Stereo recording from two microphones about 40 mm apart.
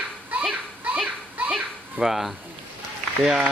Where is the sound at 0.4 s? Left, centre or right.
Centre.